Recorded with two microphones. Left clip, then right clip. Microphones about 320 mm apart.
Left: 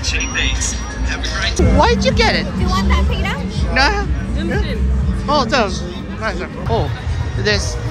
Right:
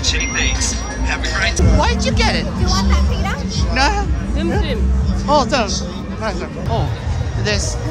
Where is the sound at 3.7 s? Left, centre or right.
Centre.